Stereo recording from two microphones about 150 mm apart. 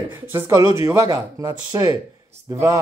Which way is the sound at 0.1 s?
15° right (ahead or behind).